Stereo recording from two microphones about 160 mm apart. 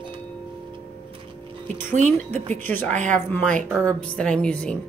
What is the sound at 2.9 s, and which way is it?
Speech, 50° right (ahead or behind).